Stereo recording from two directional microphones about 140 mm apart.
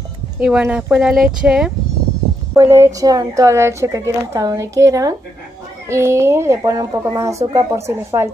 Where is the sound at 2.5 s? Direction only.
20° right (ahead or behind).